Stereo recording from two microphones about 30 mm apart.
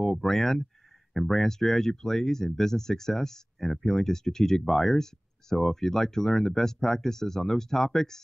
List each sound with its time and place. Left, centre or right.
0.0 s speech: centre